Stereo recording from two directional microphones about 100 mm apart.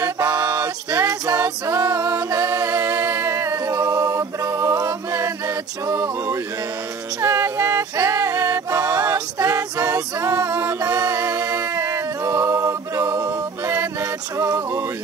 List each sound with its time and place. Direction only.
0.0 s music: 30° right (ahead or behind)
5.9 s a sound: 30° right (ahead or behind)
7.2 s music: 25° right (ahead or behind)